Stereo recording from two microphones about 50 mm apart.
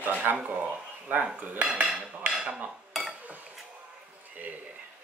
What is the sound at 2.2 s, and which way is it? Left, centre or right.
Cutlery, right.